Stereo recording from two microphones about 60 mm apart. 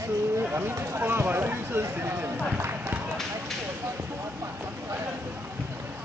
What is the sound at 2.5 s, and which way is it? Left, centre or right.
Run, right.